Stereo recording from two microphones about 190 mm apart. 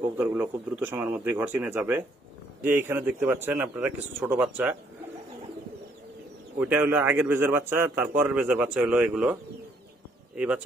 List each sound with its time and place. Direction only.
0.2 s a man's voice: 10° right (ahead or behind)
6.6 s a man's voice: 10° right (ahead or behind)